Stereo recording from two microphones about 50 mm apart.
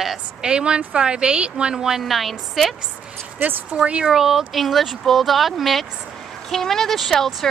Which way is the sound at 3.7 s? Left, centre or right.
Right.